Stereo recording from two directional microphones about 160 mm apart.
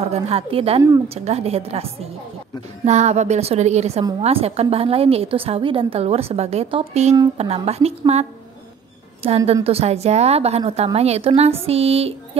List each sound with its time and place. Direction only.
0.0 s a woman's voice: 40° right (ahead or behind)
9.5 s a woman's voice: 40° right (ahead or behind)